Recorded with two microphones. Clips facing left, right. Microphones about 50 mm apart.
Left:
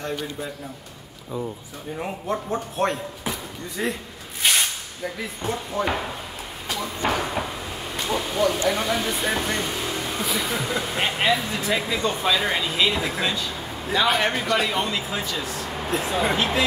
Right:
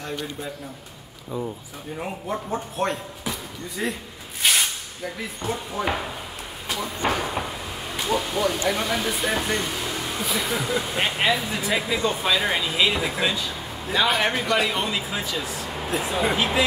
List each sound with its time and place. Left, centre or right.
0.0 s speech: centre
2.0 s speech: centre
7.9 s a sound: centre
8.6 s speech: centre